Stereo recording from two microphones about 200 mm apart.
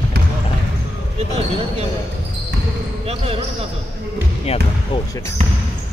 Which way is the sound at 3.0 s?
30° right (ahead or behind).